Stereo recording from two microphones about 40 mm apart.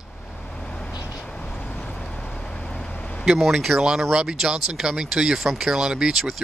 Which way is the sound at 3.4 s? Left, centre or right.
Centre.